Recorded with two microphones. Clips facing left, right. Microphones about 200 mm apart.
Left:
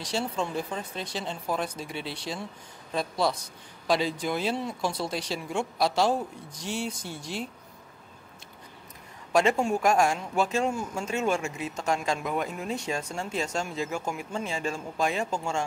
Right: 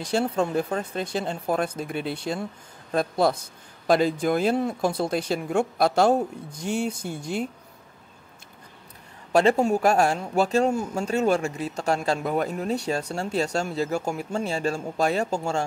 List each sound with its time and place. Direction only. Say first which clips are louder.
0.4 s speech: right 6 dB; 60° right (ahead or behind)
9.3 s speech: right 4 dB; 35° right (ahead or behind)